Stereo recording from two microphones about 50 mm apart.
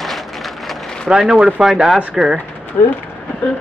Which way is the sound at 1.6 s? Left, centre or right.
Centre.